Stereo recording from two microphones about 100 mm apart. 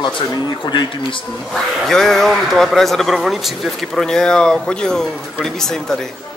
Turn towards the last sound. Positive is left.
turn(degrees=5)  # may be behind; listen again after turning